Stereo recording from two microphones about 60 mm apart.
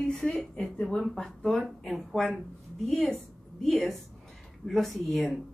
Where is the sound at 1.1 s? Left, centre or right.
Centre.